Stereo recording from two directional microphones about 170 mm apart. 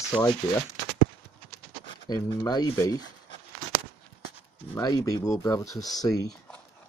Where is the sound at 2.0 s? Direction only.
20° left (ahead or behind).